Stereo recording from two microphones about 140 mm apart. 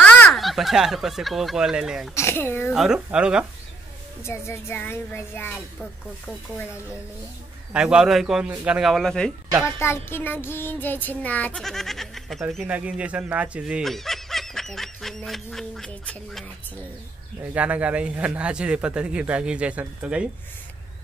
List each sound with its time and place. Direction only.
0.0 s speech: 10° left (ahead or behind)
2.1 s child singing: 15° left (ahead or behind)
2.7 s a man's voice: 5° right (ahead or behind)
4.2 s child singing: 20° left (ahead or behind)
7.7 s a man's voice: 5° right (ahead or behind)
9.8 s child singing: 20° left (ahead or behind)
11.5 s a man's voice: centre (ahead or behind)
12.6 s speech: 10° right (ahead or behind)
17.4 s a man's voice: 10° right (ahead or behind)